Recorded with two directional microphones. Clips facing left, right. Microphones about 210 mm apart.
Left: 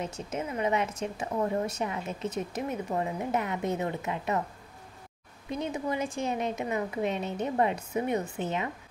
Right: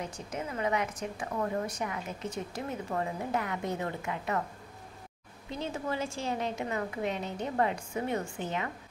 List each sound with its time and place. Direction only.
0.0 s a woman's voice: 25° left (ahead or behind)
5.5 s a woman's voice: 15° left (ahead or behind)